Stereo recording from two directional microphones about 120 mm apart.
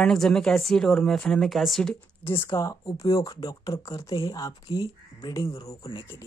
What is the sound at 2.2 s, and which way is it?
Speech, 20° left (ahead or behind).